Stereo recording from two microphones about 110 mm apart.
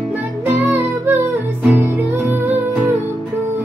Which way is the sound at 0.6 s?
20° right (ahead or behind).